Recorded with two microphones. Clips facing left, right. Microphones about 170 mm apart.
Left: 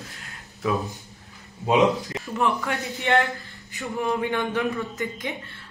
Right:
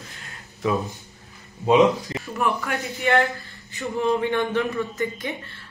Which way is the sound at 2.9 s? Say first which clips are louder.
Right 1 dB; 20° left (ahead or behind).